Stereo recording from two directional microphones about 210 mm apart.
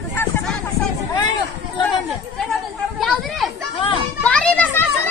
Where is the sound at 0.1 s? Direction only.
10° left (ahead or behind).